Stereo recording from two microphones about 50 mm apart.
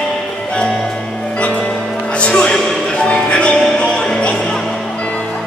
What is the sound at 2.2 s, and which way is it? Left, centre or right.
Music, left.